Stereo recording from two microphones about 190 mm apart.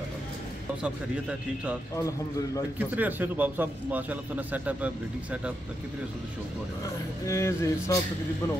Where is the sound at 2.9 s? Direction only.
10° right (ahead or behind).